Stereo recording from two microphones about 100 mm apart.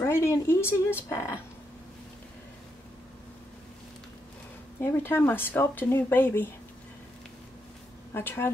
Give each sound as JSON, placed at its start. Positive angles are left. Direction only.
{"t": 0.0, "sound": "speech", "side_deg": 30}
{"t": 4.7, "sound": "speech", "side_deg": 20}
{"t": 8.1, "sound": "speech", "side_deg": 20}